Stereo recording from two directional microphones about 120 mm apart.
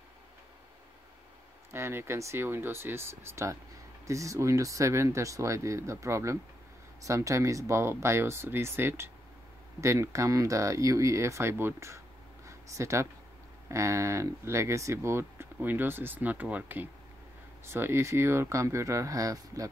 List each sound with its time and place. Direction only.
1.7 s speech: 20° right (ahead or behind)